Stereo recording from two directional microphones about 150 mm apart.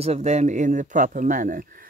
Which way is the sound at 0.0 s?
45° right (ahead or behind).